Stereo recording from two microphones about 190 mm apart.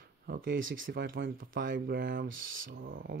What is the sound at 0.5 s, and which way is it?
Speech, 90° right.